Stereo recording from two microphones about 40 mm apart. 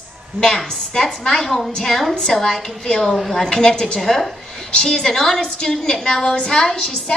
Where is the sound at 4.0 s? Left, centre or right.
Centre.